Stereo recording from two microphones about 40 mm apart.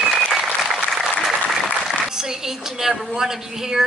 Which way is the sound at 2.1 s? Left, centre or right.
Centre.